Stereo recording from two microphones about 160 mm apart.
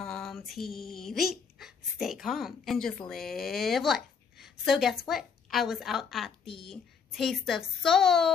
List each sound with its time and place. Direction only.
0.0 s speech: centre (ahead or behind)
6.4 s a woman's voice: 35° left (ahead or behind)
6.7 s a woman's voice: centre (ahead or behind)